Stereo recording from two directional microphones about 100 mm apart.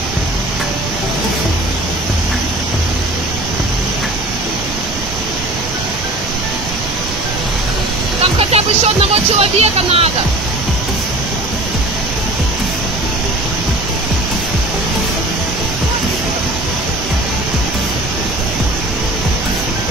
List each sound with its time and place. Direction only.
8.2 s music: 85° right